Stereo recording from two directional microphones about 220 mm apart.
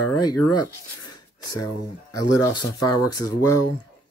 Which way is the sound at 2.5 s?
15° left (ahead or behind).